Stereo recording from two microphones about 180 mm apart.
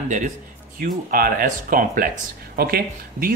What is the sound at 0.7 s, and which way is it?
Speech, 55° right (ahead or behind).